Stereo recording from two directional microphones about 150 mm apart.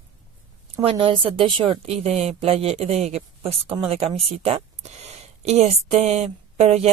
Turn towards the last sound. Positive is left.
turn(degrees=-45)  # may be behind; listen again after turning